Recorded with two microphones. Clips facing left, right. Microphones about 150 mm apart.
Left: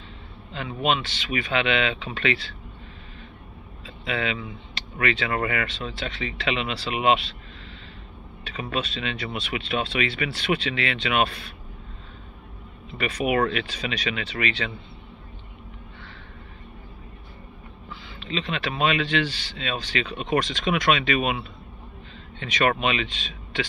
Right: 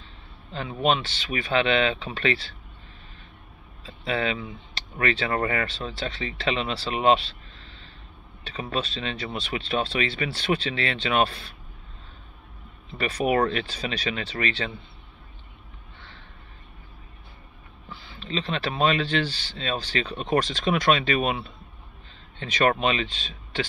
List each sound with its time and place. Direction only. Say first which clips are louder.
0.5 s speech: right 1 dB; 35° right (ahead or behind)
3.8 s speech: right 1 dB; 35° right (ahead or behind)
8.5 s speech: even; 30° right (ahead or behind)
13.0 s speech: even; 35° right (ahead or behind)
18.0 s speech: even; 35° right (ahead or behind)